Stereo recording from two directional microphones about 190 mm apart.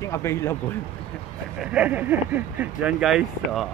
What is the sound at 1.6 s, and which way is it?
Speech, 5° right (ahead or behind).